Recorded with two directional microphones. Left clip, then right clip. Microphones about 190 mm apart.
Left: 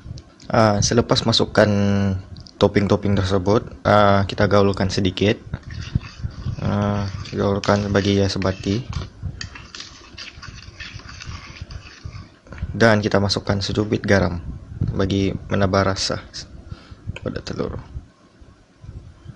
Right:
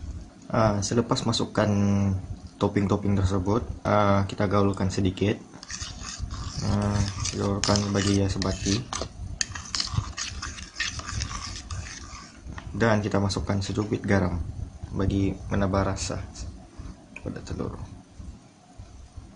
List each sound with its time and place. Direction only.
0.5 s speech: 30° left (ahead or behind)
6.6 s speech: 25° left (ahead or behind)
12.7 s speech: 30° left (ahead or behind)